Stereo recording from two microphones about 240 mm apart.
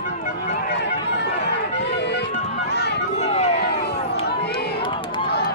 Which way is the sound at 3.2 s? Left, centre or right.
Left.